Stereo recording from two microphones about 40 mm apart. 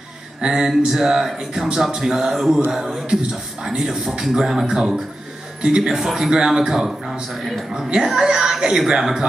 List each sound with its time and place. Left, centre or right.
0.4 s a sound: centre
0.7 s speech: centre
7.9 s speech: centre